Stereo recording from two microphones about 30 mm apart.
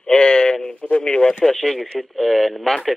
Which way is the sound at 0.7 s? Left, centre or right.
Left.